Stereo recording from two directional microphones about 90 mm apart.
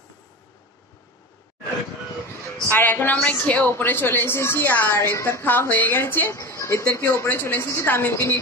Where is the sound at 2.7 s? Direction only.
20° left (ahead or behind).